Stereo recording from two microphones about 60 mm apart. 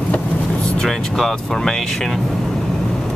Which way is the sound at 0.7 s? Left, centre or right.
Centre.